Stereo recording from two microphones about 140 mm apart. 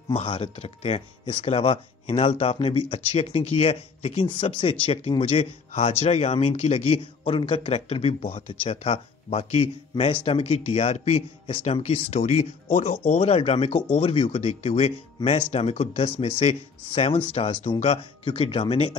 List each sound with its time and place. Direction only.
0.1 s a man's voice: 45° left (ahead or behind)